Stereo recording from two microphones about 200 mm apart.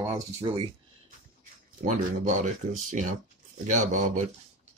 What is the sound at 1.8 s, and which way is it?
Speech, 40° right (ahead or behind).